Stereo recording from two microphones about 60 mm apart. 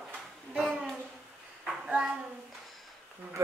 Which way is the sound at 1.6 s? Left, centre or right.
Centre.